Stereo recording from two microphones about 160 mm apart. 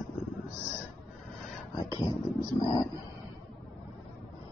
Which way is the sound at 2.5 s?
30° left (ahead or behind).